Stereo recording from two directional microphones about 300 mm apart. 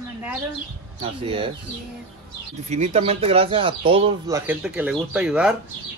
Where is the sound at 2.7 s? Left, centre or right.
Right.